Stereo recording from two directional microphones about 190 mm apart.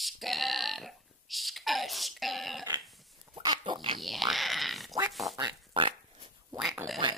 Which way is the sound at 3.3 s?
25° right (ahead or behind).